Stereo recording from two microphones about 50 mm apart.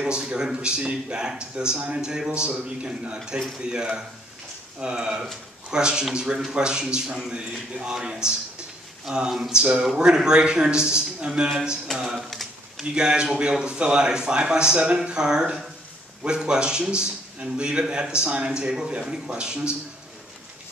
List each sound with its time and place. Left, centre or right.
0.1 s a man's voice: centre
12.2 s a sound: centre
12.9 s a man's voice: centre